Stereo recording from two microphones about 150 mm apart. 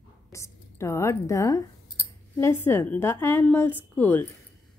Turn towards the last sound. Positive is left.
turn(degrees=10)  # may be behind; listen again after turning